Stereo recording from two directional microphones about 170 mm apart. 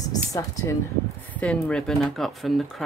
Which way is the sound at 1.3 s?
5° left (ahead or behind).